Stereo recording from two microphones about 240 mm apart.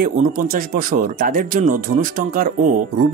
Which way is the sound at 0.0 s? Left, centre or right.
Right.